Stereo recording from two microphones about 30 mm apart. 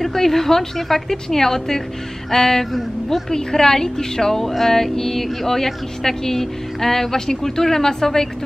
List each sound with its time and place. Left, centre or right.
0.0 s speech: centre